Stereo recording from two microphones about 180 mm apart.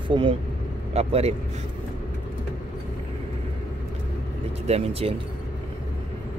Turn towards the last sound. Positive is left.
turn(degrees=-35)  # may be behind; listen again after turning